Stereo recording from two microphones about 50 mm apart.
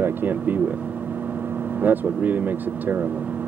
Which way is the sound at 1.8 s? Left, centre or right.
Right.